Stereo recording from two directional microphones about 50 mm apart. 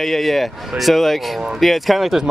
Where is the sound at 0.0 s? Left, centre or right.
Centre.